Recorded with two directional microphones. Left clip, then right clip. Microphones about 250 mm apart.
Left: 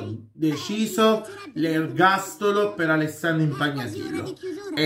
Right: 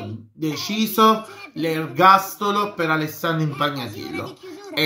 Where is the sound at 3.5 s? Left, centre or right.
Left.